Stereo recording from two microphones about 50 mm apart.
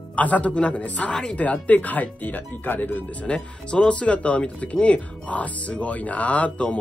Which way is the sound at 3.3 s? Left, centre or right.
Centre.